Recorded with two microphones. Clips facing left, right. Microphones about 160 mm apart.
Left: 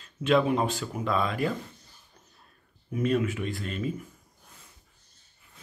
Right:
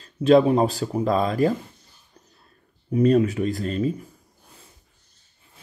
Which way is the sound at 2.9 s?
35° right (ahead or behind).